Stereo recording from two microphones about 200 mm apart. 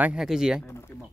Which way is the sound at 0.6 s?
15° left (ahead or behind).